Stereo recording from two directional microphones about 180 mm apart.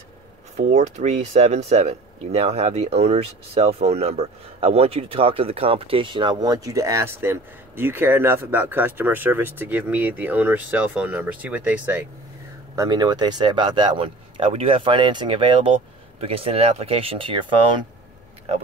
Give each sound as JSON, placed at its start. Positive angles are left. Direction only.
{"t": 0.6, "sound": "speech", "side_deg": -40}
{"t": 12.7, "sound": "speech", "side_deg": -20}